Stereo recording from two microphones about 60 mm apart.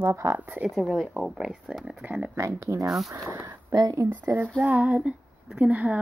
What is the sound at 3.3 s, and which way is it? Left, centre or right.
Speech, right.